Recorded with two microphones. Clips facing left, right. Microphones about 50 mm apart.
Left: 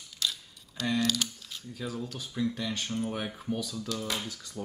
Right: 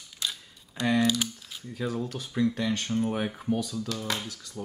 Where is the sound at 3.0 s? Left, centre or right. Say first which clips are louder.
Right 5 dB; right.